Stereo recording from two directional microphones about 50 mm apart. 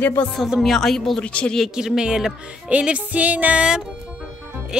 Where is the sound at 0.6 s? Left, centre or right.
Centre.